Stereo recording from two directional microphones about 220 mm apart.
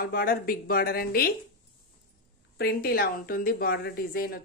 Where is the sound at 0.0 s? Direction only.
40° left (ahead or behind).